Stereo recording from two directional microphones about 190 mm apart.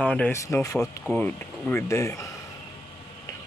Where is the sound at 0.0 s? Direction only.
10° left (ahead or behind).